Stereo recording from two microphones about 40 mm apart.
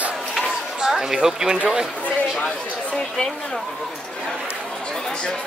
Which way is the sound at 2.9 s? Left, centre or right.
Centre.